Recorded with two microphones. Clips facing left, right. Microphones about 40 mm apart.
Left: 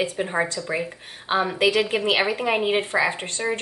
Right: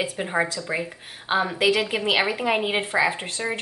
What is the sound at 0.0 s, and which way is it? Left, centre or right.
A woman's voice, centre.